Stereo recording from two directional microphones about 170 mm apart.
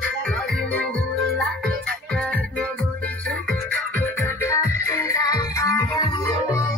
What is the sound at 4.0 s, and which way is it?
Music, 15° left (ahead or behind).